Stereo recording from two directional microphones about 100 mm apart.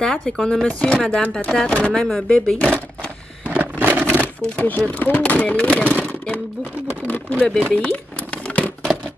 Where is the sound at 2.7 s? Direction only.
15° left (ahead or behind).